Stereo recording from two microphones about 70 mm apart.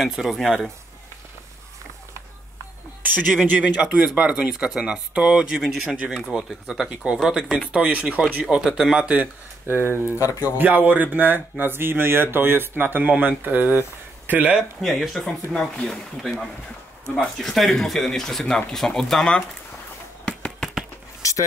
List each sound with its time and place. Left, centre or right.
0.0 s speech: centre
3.0 s a sound: right
3.4 s speech: right
9.7 s speech: right
10.1 s speech: left
10.6 s speech: right
14.8 s speech: centre
20.2 s a sound: centre
21.2 s a sound: left